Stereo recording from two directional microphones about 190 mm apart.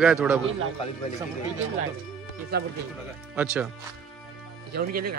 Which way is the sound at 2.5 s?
55° right (ahead or behind).